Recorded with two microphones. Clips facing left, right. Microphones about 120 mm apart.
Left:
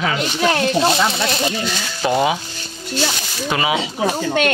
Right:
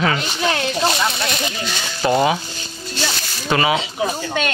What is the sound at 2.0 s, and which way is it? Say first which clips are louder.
Speech: right 1 dB; 10° left (ahead or behind).